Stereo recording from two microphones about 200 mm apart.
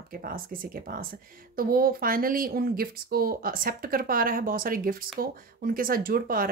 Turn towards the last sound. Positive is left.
turn(degrees=-45)  # may be behind; listen again after turning